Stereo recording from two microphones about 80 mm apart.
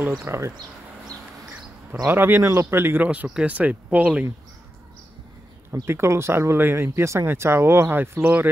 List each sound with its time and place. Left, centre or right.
0.2 s speech: right
2.0 s speech: right
3.3 s speech: centre
5.9 s speech: right